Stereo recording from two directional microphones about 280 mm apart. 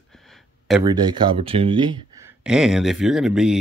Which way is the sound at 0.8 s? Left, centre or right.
Centre.